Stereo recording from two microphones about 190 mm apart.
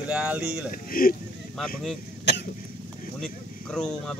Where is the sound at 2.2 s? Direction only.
65° left (ahead or behind).